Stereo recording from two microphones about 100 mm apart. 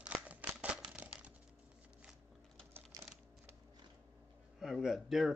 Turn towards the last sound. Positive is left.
turn(degrees=-5)  # may be behind; listen again after turning